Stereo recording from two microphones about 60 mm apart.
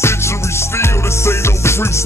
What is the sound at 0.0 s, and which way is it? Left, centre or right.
Music, left.